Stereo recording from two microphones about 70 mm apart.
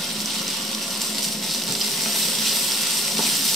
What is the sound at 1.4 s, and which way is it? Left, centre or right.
Frying, centre.